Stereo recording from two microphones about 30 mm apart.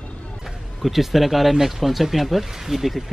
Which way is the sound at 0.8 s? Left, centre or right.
Centre.